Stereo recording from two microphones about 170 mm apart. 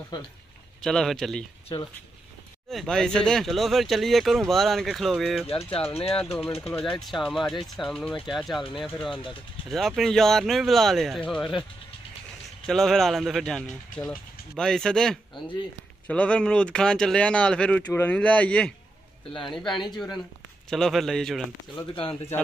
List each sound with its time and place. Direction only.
0.7 s speech: 5° left (ahead or behind)
2.7 s speech: centre (ahead or behind)
5.7 s speech: 35° left (ahead or behind)
6.3 s speech: 15° left (ahead or behind)
6.8 s speech: centre (ahead or behind)
9.1 s speech: 30° left (ahead or behind)
9.7 s speech: centre (ahead or behind)
12.6 s speech: centre (ahead or behind)